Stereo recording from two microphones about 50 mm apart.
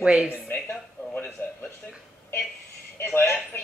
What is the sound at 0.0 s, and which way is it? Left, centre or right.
Speech, right.